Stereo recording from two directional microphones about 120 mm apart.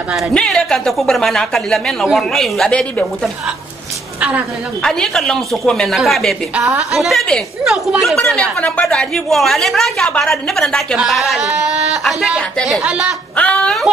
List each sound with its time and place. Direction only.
0.3 s a woman's voice: 5° left (ahead or behind)
4.8 s a woman's voice: 5° left (ahead or behind)
6.5 s a woman's voice: 10° right (ahead or behind)
12.8 s speech: 10° right (ahead or behind)
13.4 s a woman's voice: 10° left (ahead or behind)